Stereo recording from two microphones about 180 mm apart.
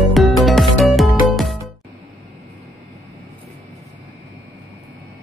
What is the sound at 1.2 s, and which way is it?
Music, centre (ahead or behind).